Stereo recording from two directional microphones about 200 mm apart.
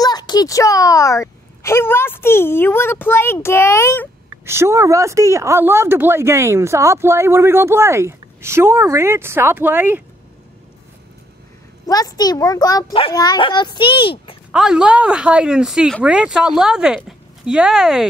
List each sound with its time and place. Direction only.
0.0 s a child's voice: 20° left (ahead or behind)
4.5 s speech: 15° right (ahead or behind)
11.8 s a child's voice: 20° left (ahead or behind)
14.5 s speech: 5° right (ahead or behind)